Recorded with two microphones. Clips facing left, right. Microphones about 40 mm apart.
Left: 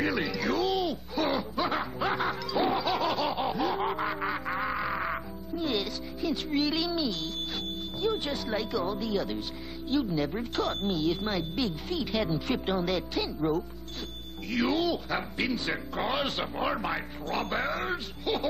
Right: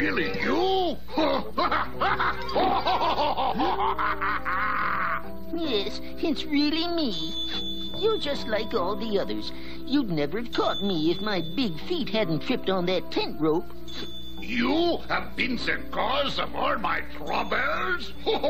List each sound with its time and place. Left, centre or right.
0.0 s a sound: centre
4.1 s music: centre
6.7 s speech: centre